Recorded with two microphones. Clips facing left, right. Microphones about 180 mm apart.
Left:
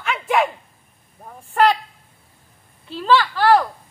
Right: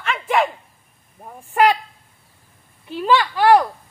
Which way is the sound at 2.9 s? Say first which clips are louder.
Even; 15° right (ahead or behind).